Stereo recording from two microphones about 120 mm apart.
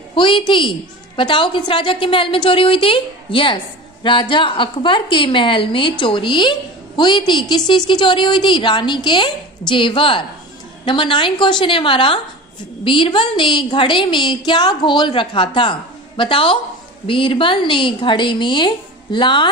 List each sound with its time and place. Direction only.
0.1 s a woman's voice: 45° left (ahead or behind)